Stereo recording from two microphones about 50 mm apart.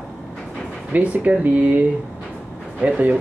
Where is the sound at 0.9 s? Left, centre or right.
Right.